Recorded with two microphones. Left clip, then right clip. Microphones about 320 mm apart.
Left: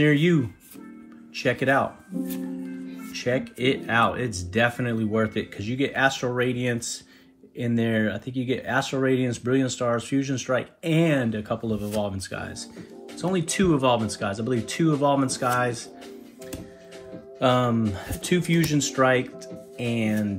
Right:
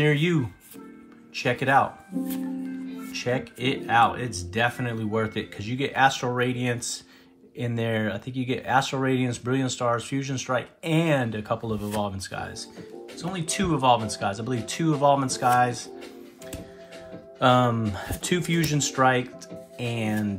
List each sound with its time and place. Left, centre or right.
0.0 s speech: centre
17.4 s speech: centre
19.8 s speech: right